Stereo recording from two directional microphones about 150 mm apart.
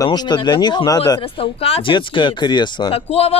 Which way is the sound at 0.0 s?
25° left (ahead or behind).